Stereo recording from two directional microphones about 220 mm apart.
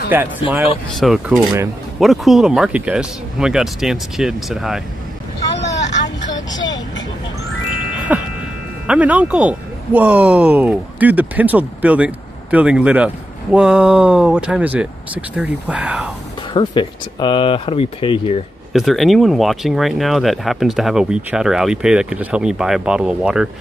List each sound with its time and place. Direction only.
0.1 s speech: 10° right (ahead or behind)
5.6 s vehicle: 55° left (ahead or behind)
8.1 s a sound: 5° right (ahead or behind)
8.8 s speech: 5° right (ahead or behind)
16.5 s speech: 20° left (ahead or behind)
18.7 s speech: centre (ahead or behind)